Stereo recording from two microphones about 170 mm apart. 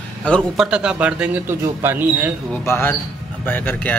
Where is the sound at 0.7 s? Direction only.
5° right (ahead or behind).